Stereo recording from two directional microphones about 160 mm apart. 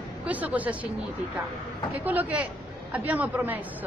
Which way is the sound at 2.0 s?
10° right (ahead or behind).